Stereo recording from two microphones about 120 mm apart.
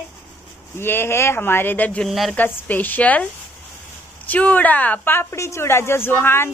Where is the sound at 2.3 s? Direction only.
15° left (ahead or behind).